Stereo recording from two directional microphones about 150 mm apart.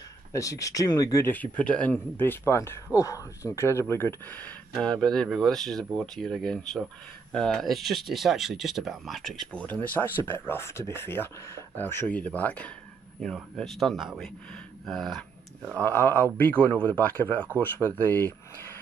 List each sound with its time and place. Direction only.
0.3 s speech: 20° left (ahead or behind); by 15.2 s centre (ahead or behind)
15.7 s speech: 10° left (ahead or behind)